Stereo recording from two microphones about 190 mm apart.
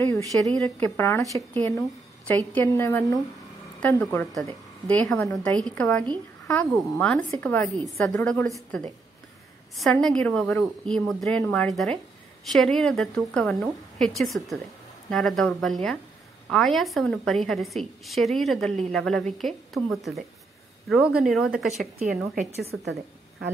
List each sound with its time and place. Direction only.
0.0 s a woman's voice: 15° left (ahead or behind)
22.3 s a woman's voice: 40° right (ahead or behind)